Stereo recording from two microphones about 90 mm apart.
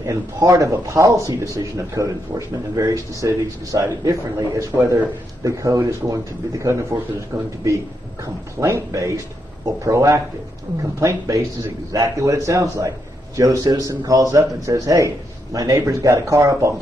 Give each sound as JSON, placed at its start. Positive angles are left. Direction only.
{"t": 0.0, "sound": "a man's voice", "side_deg": -35}
{"t": 7.3, "sound": "speech", "side_deg": -35}
{"t": 8.5, "sound": "speech", "side_deg": -35}